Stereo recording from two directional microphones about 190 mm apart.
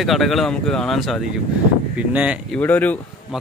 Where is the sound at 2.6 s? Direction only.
10° left (ahead or behind).